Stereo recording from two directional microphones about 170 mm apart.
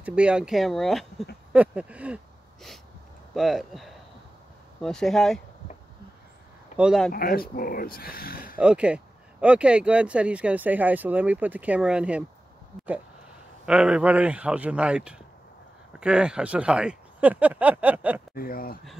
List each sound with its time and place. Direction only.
0.0 s speech: 5° right (ahead or behind)
6.8 s speech: centre (ahead or behind)
7.1 s speech: 60° left (ahead or behind)
8.5 s speech: 5° right (ahead or behind)
13.7 s speech: 5° right (ahead or behind)
18.3 s speech: 60° left (ahead or behind)